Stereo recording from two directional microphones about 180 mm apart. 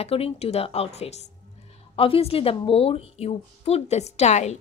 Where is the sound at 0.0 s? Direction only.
35° left (ahead or behind).